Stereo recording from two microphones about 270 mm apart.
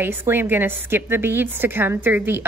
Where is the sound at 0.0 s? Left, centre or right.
Centre.